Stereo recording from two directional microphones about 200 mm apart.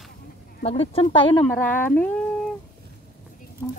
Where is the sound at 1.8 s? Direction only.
5° left (ahead or behind).